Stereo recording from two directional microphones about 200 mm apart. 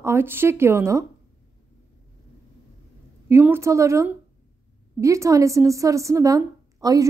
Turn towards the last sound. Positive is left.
turn(degrees=-15)  # may be behind; listen again after turning